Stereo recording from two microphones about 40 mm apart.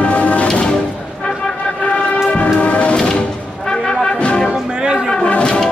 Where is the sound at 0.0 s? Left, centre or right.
Left.